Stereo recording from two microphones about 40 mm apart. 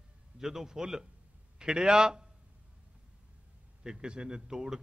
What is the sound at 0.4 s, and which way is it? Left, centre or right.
A man's voice, centre.